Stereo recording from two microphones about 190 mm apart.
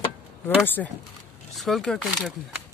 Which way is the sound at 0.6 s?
10° left (ahead or behind).